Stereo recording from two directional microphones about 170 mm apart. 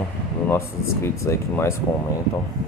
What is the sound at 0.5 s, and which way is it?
Speech, 15° left (ahead or behind).